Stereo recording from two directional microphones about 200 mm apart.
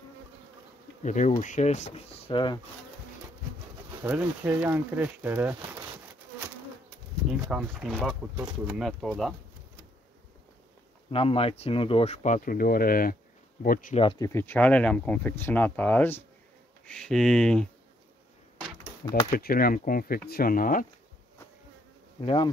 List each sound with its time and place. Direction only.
1.0 s speech: 35° left (ahead or behind)
4.0 s speech: 10° right (ahead or behind)
7.4 s speech: 5° right (ahead or behind)
11.1 s speech: 30° left (ahead or behind)
13.9 s speech: 20° left (ahead or behind); by 17.6 s 5° left (ahead or behind)
19.3 s speech: 50° left (ahead or behind)
22.2 s bee: 25° left (ahead or behind)